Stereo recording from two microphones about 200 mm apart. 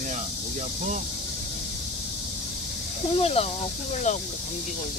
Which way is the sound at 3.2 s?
30° left (ahead or behind).